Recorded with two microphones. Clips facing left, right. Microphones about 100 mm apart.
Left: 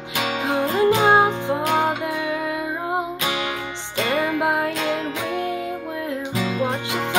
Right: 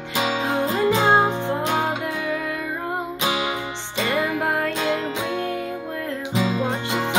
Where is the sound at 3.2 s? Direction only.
20° right (ahead or behind).